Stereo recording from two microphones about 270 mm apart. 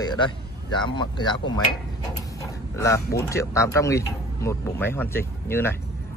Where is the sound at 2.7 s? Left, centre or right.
Centre.